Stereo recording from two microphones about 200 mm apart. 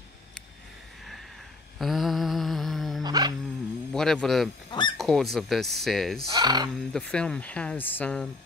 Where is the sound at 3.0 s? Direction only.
20° right (ahead or behind).